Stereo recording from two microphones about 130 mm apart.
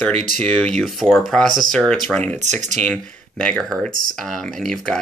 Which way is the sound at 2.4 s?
65° right (ahead or behind).